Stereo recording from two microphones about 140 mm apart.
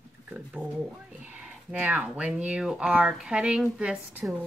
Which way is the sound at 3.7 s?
10° right (ahead or behind).